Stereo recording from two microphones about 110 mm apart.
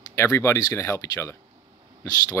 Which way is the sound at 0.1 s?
25° left (ahead or behind).